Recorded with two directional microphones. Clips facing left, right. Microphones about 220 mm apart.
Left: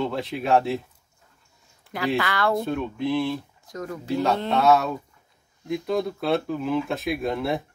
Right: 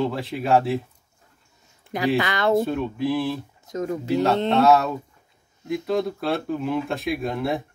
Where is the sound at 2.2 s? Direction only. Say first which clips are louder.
Right 4 dB; 20° right (ahead or behind).